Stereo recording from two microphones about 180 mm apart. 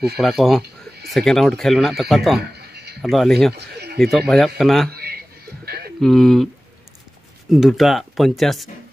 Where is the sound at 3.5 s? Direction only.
65° right (ahead or behind).